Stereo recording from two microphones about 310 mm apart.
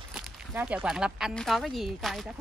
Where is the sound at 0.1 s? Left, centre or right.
Centre.